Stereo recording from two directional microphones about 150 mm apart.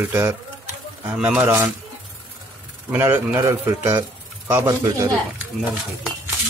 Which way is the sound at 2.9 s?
10° right (ahead or behind).